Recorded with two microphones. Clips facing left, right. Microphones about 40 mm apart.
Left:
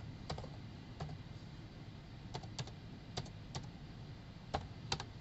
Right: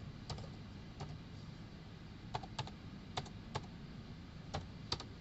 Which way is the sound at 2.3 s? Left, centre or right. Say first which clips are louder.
Right 4 dB; right.